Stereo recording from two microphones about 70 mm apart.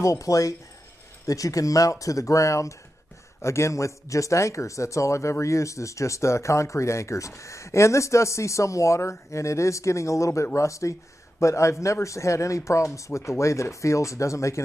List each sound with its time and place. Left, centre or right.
0.0 s speech: left